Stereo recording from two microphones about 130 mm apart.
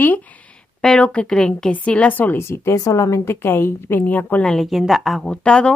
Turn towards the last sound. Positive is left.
turn(degrees=5)  # may be behind; listen again after turning